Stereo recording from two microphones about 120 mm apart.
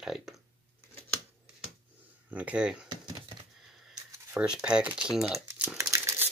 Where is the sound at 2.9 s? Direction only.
35° right (ahead or behind).